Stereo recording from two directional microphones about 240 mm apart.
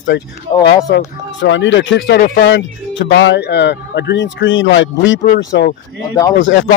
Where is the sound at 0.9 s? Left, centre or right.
Left.